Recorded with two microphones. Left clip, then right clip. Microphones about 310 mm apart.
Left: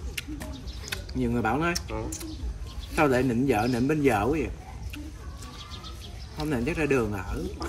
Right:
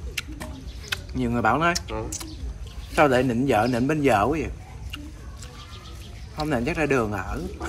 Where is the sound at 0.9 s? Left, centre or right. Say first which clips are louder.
Right 3 dB; centre.